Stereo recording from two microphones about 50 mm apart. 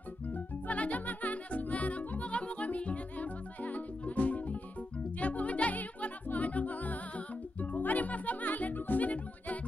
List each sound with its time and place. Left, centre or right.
0.3 s music: left